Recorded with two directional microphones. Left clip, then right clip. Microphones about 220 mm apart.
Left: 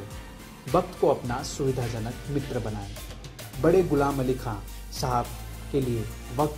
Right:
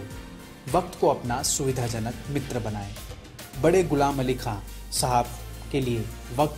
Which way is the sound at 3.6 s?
25° right (ahead or behind).